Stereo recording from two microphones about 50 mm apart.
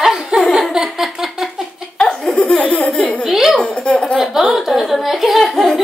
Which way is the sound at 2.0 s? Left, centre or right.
Centre.